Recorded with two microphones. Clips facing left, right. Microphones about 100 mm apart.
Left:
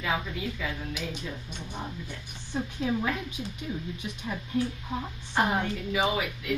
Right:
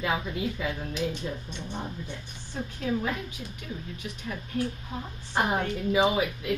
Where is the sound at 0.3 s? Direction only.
30° right (ahead or behind).